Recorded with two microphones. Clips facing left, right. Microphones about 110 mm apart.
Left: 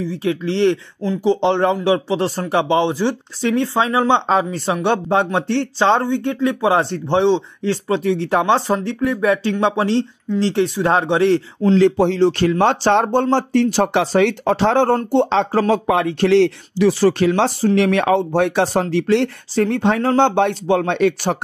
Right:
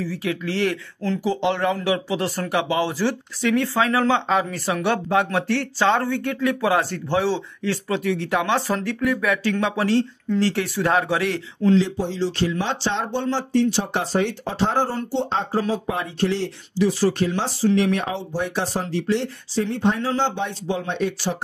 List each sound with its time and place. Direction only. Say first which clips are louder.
0.0 s speech: left 5 dB; 25° left (ahead or behind)
11.7 s speech: left 8 dB; 65° left (ahead or behind)
15.0 s speech: left 8 dB; 60° left (ahead or behind)
17.7 s speech: left 6 dB; 75° left (ahead or behind)